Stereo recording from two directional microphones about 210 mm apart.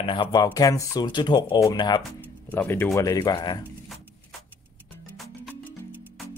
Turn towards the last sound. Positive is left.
turn(degrees=-5)  # may be behind; listen again after turning